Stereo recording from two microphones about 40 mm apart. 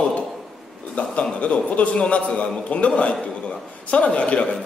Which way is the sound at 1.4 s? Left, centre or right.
Left.